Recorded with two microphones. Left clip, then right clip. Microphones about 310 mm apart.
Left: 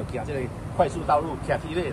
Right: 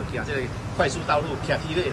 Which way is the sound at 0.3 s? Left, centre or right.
Left.